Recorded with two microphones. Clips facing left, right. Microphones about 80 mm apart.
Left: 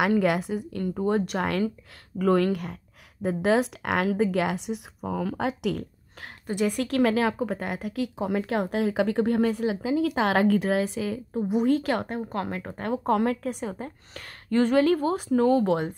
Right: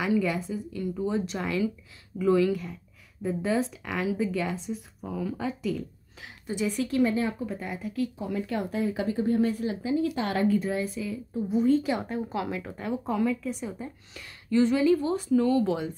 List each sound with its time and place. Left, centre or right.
0.0 s a woman's voice: left
5.4 s a woman's voice: left
6.2 s a woman's voice: left
11.5 s speech: left
12.4 s a woman's voice: left